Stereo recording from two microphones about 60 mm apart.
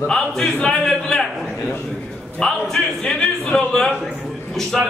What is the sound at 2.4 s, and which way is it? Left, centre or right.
Speech, centre.